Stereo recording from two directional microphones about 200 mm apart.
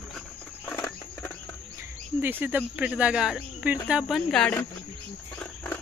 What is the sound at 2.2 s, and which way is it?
Speech, 10° right (ahead or behind).